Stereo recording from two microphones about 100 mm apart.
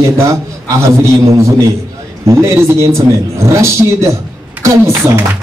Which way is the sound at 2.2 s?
30° right (ahead or behind).